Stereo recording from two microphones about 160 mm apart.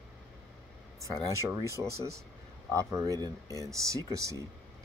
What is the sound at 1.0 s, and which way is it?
Speech, 20° right (ahead or behind).